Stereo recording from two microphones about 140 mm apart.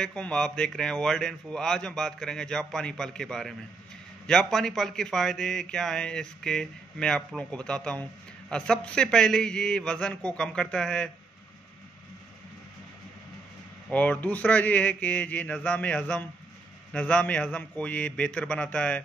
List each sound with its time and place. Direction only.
0.0 s speech: 5° left (ahead or behind)
13.8 s speech: 10° left (ahead or behind)